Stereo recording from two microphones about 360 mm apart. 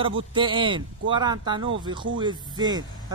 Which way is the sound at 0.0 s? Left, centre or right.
Centre.